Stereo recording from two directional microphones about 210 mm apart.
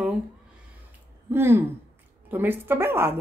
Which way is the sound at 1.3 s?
10° right (ahead or behind).